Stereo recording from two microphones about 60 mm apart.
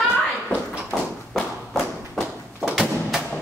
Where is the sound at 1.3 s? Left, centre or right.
Centre.